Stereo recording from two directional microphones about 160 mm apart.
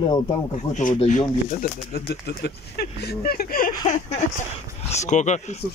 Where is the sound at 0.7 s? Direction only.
50° left (ahead or behind).